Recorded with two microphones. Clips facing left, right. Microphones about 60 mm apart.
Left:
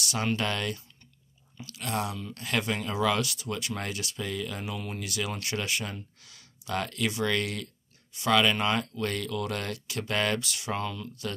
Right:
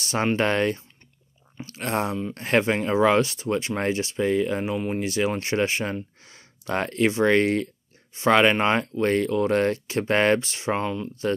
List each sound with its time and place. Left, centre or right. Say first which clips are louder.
0.0 s speech: right 7 dB; right